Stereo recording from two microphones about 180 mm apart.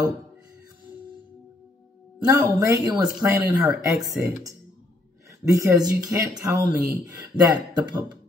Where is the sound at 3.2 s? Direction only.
10° right (ahead or behind).